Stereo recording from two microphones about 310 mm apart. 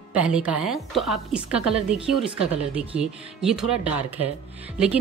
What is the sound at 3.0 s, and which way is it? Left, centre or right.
Speech, centre.